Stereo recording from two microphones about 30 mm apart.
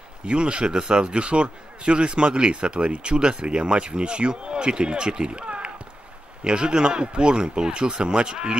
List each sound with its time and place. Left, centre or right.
0.3 s speech: right